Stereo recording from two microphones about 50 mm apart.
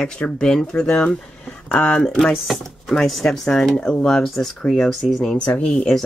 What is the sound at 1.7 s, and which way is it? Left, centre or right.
Speech, left.